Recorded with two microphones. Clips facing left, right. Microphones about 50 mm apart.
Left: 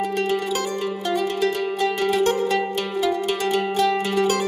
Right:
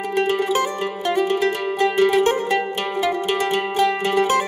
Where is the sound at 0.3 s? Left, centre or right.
Right.